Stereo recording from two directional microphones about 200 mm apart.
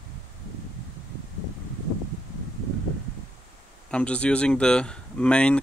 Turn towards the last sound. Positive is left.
turn(degrees=5)  # may be behind; listen again after turning